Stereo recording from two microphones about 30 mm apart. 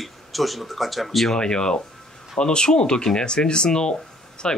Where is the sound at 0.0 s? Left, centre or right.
Centre.